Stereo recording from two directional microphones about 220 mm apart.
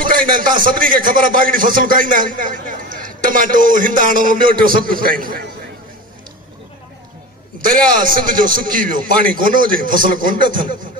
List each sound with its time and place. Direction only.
0.0 s a man's voice: 40° right (ahead or behind)
7.6 s a man's voice: 40° right (ahead or behind)